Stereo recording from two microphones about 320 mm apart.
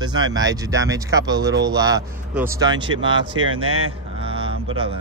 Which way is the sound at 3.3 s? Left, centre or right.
Right.